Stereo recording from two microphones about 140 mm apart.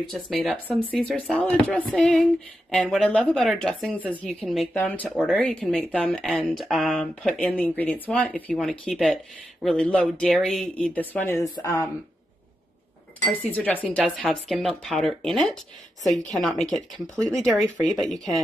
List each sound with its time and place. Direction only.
0.1 s speech: centre (ahead or behind)
4.7 s speech: 10° left (ahead or behind)
11.3 s speech: 20° left (ahead or behind)
13.4 s speech: 10° left (ahead or behind)